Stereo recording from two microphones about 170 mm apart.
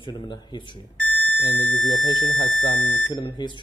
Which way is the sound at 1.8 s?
25° left (ahead or behind).